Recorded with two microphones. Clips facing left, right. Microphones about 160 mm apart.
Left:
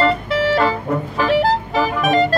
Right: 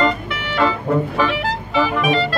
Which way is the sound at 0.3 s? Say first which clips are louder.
Left 4 dB; 35° left (ahead or behind).